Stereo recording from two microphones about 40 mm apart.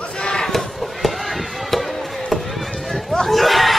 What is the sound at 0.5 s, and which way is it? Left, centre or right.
Chop, centre.